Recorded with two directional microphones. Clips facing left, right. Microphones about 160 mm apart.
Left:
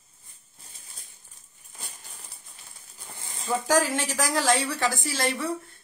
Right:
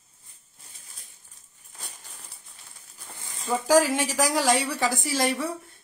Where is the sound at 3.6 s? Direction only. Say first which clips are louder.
Right 4 dB; 10° right (ahead or behind).